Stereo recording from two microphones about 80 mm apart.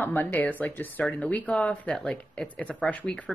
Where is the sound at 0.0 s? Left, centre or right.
Left.